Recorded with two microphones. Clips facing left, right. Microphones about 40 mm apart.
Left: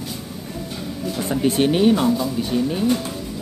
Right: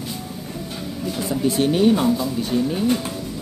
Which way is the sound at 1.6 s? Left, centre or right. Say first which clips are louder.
Even; centre.